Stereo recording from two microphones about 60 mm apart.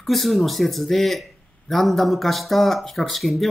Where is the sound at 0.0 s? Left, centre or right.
Centre.